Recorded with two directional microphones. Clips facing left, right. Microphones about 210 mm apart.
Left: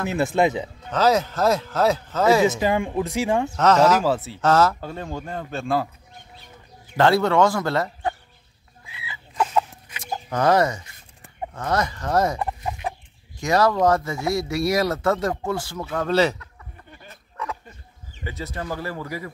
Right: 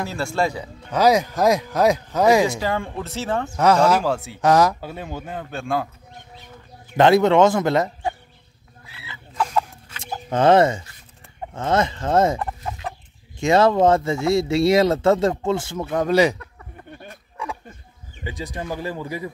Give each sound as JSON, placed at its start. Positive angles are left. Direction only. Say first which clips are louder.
{"t": 0.1, "sound": "speech", "louder": "left 6 dB", "side_deg": 20}
{"t": 0.9, "sound": "speech", "louder": "right 2 dB", "side_deg": -15}
{"t": 2.4, "sound": "speech", "louder": "left 3 dB", "side_deg": 20}
{"t": 3.5, "sound": "speech", "louder": "right 1 dB", "side_deg": -10}
{"t": 4.0, "sound": "speech", "louder": "left 1 dB", "side_deg": 0}
{"t": 4.4, "sound": "speech", "louder": "right 3 dB", "side_deg": -15}
{"t": 7.0, "sound": "speech", "louder": "right 4 dB", "side_deg": -20}
{"t": 9.0, "sound": "chicken", "louder": "left 1 dB", "side_deg": 5}
{"t": 10.3, "sound": "speech", "louder": "right 4 dB", "side_deg": -25}
{"t": 12.4, "sound": "chicken", "louder": "left 1 dB", "side_deg": 15}
{"t": 13.4, "sound": "speech", "louder": "right 3 dB", "side_deg": -25}
{"t": 17.4, "sound": "a sound", "louder": "even", "side_deg": -10}
{"t": 18.2, "sound": "speech", "louder": "right 1 dB", "side_deg": -15}